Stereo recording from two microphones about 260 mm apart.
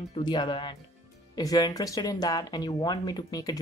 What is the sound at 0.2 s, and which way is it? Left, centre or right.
Speech, centre.